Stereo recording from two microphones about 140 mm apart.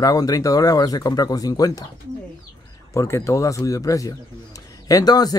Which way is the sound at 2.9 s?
20° left (ahead or behind).